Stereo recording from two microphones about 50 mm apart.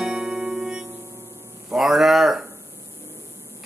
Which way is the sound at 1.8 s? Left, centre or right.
Centre.